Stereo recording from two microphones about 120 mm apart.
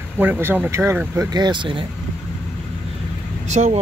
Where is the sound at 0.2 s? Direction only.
15° right (ahead or behind).